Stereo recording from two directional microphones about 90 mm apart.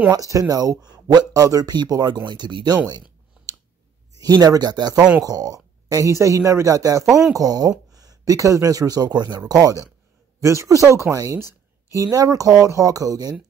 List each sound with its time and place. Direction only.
0.1 s speech: 40° right (ahead or behind)
3.4 s a sound: 15° right (ahead or behind)
4.2 s a woman's voice: 45° right (ahead or behind)